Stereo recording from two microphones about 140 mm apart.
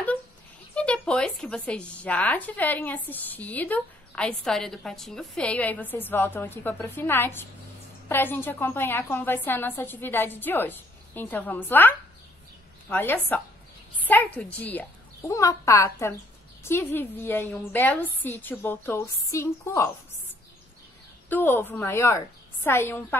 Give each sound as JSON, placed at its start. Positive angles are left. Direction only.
{"t": 0.7, "sound": "a woman's voice", "side_deg": 10}
{"t": 12.9, "sound": "a woman's voice", "side_deg": 15}
{"t": 15.2, "sound": "a woman's voice", "side_deg": 20}
{"t": 21.3, "sound": "a woman's voice", "side_deg": 15}